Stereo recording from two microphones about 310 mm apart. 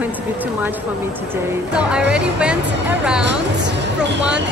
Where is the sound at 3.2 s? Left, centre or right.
Right.